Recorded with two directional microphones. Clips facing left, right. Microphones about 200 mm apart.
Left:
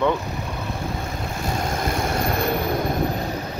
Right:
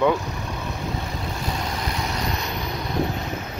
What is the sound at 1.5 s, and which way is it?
Vehicle, 45° left (ahead or behind).